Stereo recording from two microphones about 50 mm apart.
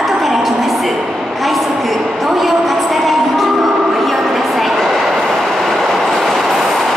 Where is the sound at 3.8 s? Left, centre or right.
Centre.